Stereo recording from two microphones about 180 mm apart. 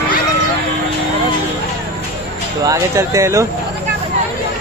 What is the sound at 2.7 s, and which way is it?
Speech, 15° right (ahead or behind).